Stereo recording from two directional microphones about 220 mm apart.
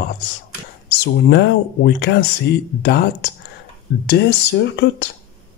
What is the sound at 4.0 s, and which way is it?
Speech, 50° left (ahead or behind).